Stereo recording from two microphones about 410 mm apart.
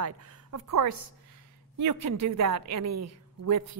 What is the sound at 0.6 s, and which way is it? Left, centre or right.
A woman's voice, right.